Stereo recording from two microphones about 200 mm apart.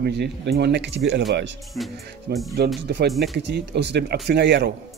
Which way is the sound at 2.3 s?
50° right (ahead or behind).